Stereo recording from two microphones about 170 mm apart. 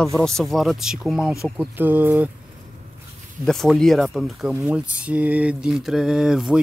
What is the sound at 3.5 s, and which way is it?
Speech, centre (ahead or behind).